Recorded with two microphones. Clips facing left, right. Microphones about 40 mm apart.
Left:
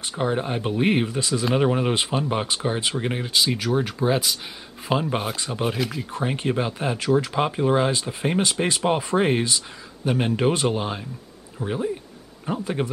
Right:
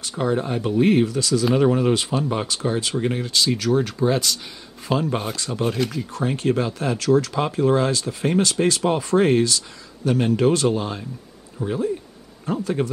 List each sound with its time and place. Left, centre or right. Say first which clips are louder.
0.2 s speech: right 2 dB; left
6.1 s speech: right 3 dB; left